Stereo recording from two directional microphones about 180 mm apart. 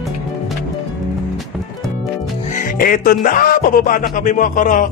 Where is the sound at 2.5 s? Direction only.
50° left (ahead or behind).